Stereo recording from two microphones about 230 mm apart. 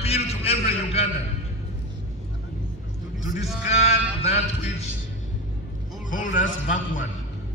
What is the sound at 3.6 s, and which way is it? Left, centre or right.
A man's voice, left.